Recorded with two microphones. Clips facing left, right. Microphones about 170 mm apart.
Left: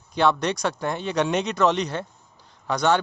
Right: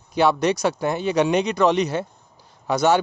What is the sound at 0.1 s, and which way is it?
Speech, 5° right (ahead or behind).